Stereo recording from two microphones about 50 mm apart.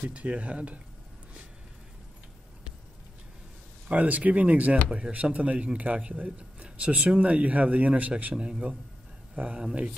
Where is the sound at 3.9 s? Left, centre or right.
Right.